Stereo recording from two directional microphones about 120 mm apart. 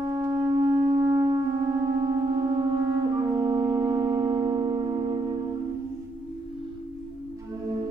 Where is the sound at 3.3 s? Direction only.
25° right (ahead or behind).